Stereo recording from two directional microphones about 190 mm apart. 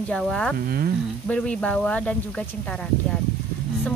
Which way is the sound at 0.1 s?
5° left (ahead or behind).